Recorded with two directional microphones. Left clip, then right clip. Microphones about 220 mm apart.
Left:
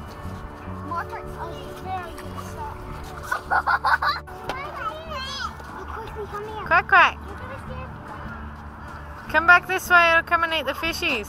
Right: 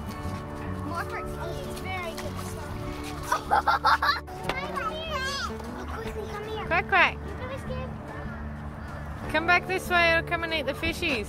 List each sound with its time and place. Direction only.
3.5 s chicken: 5° right (ahead or behind)
4.7 s children playing: 30° right (ahead or behind)
6.7 s speech: 10° right (ahead or behind)
9.3 s speech: 10° right (ahead or behind)